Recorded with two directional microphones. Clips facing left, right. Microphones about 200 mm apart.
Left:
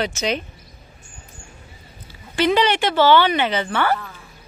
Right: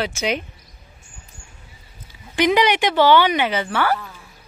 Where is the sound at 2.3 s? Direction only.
15° right (ahead or behind).